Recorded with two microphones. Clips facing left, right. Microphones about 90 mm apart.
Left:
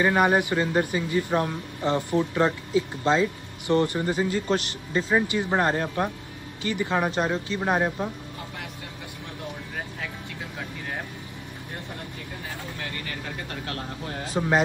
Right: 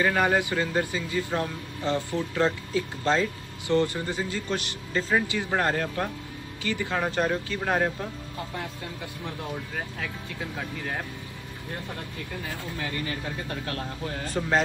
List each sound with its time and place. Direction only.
0.0 s speech: 20° left (ahead or behind)
4.9 s speech: 20° left (ahead or behind)
13.7 s speech: 30° left (ahead or behind)